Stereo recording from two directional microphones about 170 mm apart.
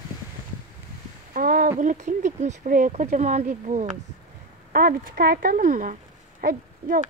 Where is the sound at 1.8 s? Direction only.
45° right (ahead or behind).